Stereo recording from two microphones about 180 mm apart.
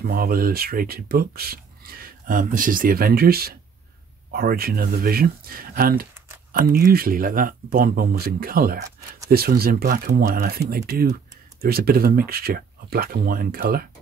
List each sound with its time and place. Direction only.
0.0 s speech: 55° right (ahead or behind)